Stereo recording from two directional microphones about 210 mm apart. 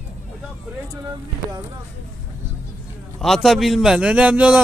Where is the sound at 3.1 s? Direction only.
Centre (ahead or behind).